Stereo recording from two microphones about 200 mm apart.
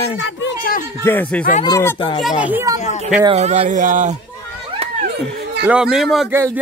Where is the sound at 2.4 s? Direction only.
10° right (ahead or behind).